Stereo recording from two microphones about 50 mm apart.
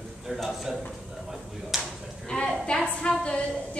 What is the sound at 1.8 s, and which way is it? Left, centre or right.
Livestock, centre.